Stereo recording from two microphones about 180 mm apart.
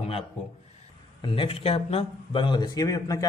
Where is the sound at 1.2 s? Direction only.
30° left (ahead or behind).